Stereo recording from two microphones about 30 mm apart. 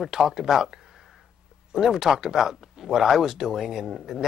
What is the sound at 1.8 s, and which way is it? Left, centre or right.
Speech, centre.